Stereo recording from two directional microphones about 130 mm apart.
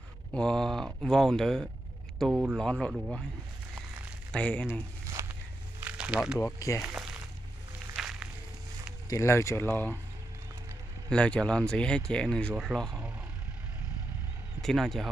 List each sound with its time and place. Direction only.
0.3 s speech: 5° left (ahead or behind)
4.3 s speech: 10° left (ahead or behind)
5.2 s a sound: 25° right (ahead or behind)
5.9 s a sound: 10° right (ahead or behind)
6.4 s speech: 25° left (ahead or behind)
6.8 s speech: 5° right (ahead or behind)
7.9 s a sound: 5° right (ahead or behind)
9.1 s speech: 20° left (ahead or behind)
11.1 s speech: 5° left (ahead or behind)
14.6 s speech: 5° left (ahead or behind)